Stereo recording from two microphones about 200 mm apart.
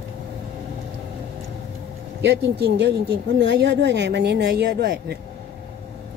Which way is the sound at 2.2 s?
60° right (ahead or behind).